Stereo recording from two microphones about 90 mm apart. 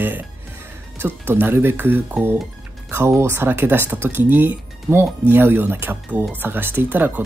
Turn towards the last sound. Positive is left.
turn(degrees=-20)  # may be behind; listen again after turning